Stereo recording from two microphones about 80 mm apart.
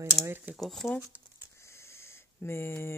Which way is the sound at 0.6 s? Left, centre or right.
Centre.